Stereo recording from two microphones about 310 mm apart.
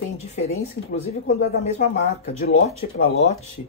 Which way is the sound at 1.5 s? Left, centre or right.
Left.